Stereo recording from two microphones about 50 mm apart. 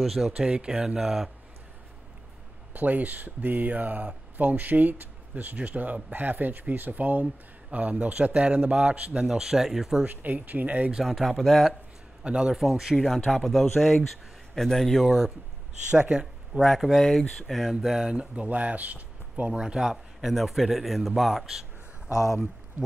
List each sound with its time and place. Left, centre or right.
0.0 s speech: centre
0.4 s speech: centre
2.7 s speech: right; by 10.0 s centre
10.0 s speech: right
11.1 s speech: centre
12.2 s a man's voice: centre
12.5 s speech: centre
15.0 s speech: centre
15.9 s speech: centre
16.5 s speech: centre
17.7 s speech: centre; by 19.5 s right
19.5 s a man's voice: centre
22.1 s speech: left